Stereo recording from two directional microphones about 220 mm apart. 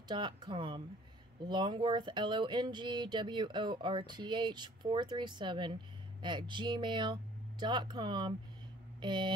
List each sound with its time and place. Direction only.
0.1 s speech: 20° right (ahead or behind)